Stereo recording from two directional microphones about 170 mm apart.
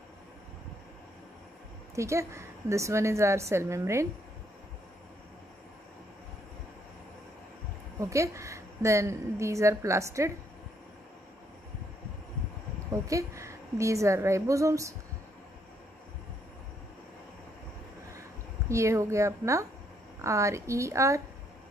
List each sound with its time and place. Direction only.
2.0 s a woman's voice: 15° right (ahead or behind)
8.0 s a woman's voice: 20° right (ahead or behind)
12.9 s a woman's voice: 20° right (ahead or behind)
18.7 s a woman's voice: 15° right (ahead or behind)